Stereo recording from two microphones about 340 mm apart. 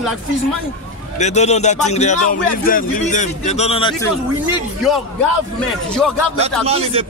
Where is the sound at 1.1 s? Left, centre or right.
Centre.